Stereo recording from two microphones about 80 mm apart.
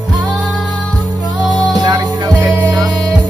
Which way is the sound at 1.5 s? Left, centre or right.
Right.